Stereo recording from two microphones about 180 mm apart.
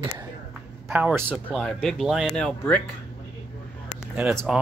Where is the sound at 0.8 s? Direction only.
10° right (ahead or behind).